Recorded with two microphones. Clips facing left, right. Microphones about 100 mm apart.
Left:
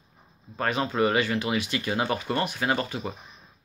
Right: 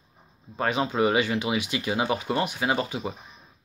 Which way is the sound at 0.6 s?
15° right (ahead or behind).